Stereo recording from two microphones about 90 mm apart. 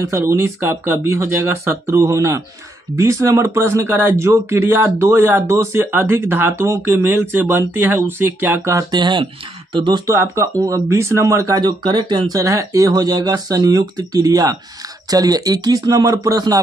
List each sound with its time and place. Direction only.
0.3 s speech: 30° right (ahead or behind)
8.9 s speech: 55° right (ahead or behind)
9.2 s speech: 75° right (ahead or behind); by 10.0 s 60° right (ahead or behind)
10.0 s speech: 30° right (ahead or behind)
11.6 s speech: 55° right (ahead or behind)